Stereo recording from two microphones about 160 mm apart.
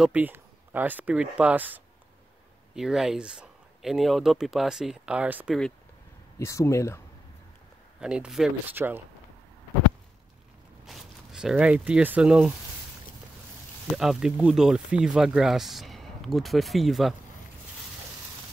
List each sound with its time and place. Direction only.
0.0 s speech: 10° right (ahead or behind)
6.3 s speech: 20° left (ahead or behind)
8.0 s speech: 5° right (ahead or behind)
10.9 s speech: centre (ahead or behind)
13.9 s speech: 5° right (ahead or behind)